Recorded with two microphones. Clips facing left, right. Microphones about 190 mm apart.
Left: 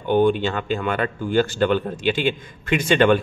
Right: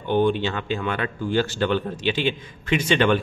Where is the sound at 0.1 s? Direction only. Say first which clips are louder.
Left 3 dB; 50° left (ahead or behind).